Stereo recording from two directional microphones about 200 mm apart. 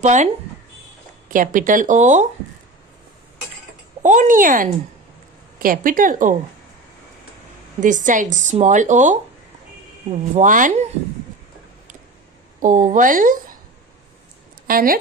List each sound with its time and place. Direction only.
0.0 s speech: 35° right (ahead or behind)
1.3 s speech: 40° right (ahead or behind)
4.0 s speech: 40° right (ahead or behind)
7.8 s speech: 40° right (ahead or behind)
10.3 s speech: 40° right (ahead or behind)
12.5 s speech: 40° right (ahead or behind)
14.7 s speech: 45° right (ahead or behind)